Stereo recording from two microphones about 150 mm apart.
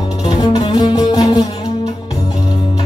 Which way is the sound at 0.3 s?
35° left (ahead or behind).